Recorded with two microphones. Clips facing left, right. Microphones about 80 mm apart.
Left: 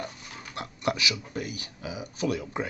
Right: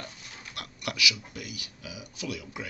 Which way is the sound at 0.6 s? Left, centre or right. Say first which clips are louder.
Left 5 dB; left.